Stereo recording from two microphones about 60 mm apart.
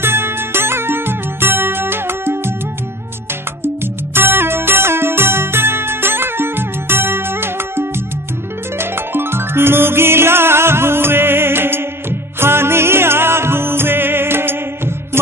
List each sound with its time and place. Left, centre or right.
0.0 s music: right
3.6 s music: right